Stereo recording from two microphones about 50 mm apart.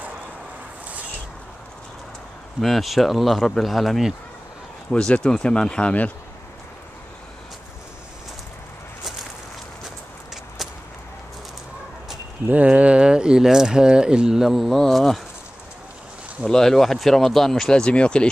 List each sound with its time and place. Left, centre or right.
2.6 s speech: centre
4.9 s speech: left
5.2 s speech: centre
9.8 s walk: centre
12.4 s speech: right; by 15.2 s centre
16.4 s speech: centre